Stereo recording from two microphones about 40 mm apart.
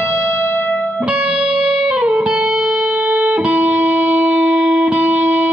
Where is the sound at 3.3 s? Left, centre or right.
Right.